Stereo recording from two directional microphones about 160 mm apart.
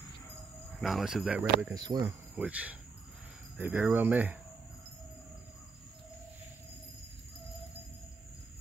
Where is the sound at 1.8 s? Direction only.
25° right (ahead or behind).